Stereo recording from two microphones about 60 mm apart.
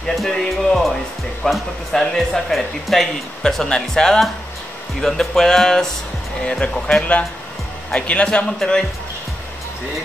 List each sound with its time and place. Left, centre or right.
0.3 s music: centre
1.4 s speech: centre
8.5 s speech: centre